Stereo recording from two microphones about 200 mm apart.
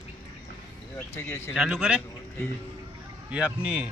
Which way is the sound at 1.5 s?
5° right (ahead or behind).